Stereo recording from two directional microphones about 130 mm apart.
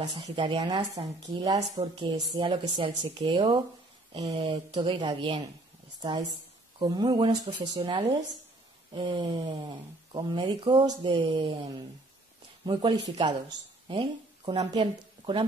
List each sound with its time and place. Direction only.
0.1 s speech: 30° right (ahead or behind)
1.8 s speech: 40° right (ahead or behind)
4.2 s speech: 55° right (ahead or behind)
4.7 s a woman's voice: 35° right (ahead or behind)